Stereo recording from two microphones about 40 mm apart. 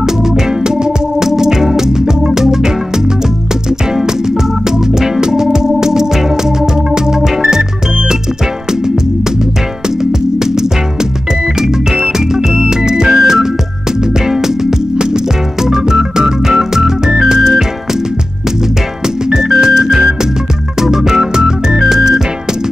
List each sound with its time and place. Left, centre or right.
0.0 s organ: centre
4.6 s music: centre
10.4 s music: centre
12.4 s music: centre
15.6 s organ: centre
17.2 s music: centre
19.3 s music: centre
20.8 s organ: centre
21.7 s music: centre